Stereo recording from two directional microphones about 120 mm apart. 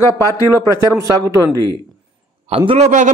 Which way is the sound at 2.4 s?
55° right (ahead or behind).